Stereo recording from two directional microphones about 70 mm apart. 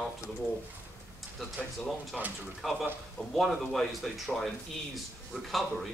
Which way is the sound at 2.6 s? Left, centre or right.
Centre.